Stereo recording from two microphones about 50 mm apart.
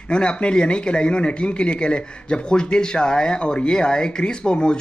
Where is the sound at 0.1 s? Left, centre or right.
Centre.